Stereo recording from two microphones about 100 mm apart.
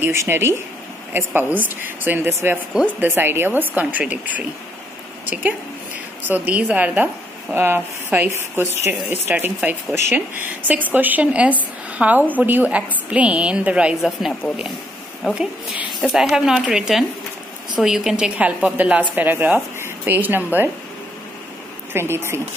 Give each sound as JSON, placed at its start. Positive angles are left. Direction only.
{"t": 0.0, "sound": "a woman's voice", "side_deg": -25}
{"t": 6.2, "sound": "a woman's voice", "side_deg": -15}
{"t": 16.0, "sound": "a woman's voice", "side_deg": -5}
{"t": 21.9, "sound": "speech", "side_deg": -25}